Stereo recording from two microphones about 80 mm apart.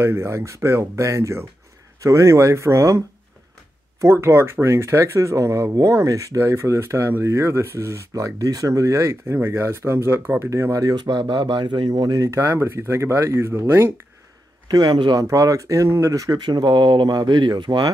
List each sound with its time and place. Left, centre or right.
0.0 s speech: right
4.0 s speech: right
11.1 s speech: right
11.9 s speech: right
12.3 s speech: right
14.7 s speech: right
15.1 s speech: right
16.4 s speech: right